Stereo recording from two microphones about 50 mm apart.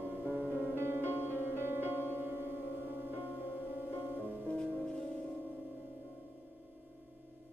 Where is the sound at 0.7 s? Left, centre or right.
Right.